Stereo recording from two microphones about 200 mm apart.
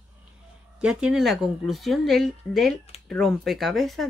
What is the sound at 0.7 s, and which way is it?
Speech, 5° right (ahead or behind).